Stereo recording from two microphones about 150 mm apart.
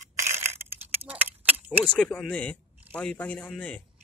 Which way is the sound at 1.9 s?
5° left (ahead or behind).